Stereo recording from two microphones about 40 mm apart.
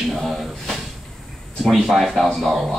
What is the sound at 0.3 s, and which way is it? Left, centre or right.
Drawer open or close, centre.